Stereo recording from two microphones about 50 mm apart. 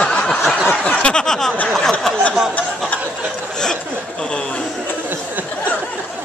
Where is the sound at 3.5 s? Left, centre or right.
Centre.